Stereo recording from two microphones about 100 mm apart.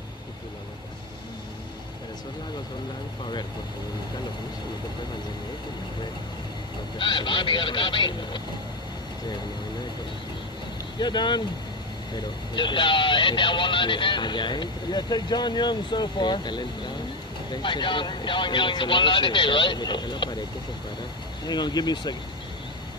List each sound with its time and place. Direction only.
7.0 s speech: 55° left (ahead or behind)
11.0 s speech: 50° left (ahead or behind)
21.5 s speech: 45° left (ahead or behind)